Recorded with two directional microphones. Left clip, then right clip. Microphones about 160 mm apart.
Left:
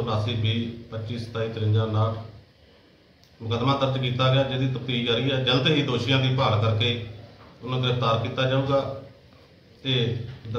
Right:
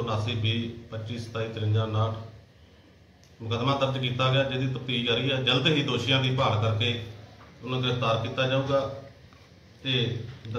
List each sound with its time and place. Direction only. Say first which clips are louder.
0.0 s a man's voice: left 2 dB; 10° left (ahead or behind)
3.4 s a man's voice: left 2 dB; 10° left (ahead or behind)